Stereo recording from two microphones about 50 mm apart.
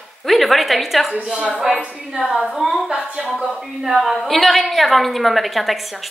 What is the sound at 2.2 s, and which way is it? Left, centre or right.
A woman's voice, centre.